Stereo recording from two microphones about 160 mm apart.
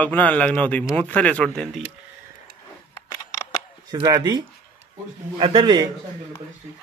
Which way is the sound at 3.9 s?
25° right (ahead or behind).